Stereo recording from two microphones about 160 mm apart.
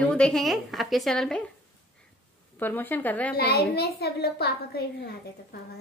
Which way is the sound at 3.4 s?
80° left.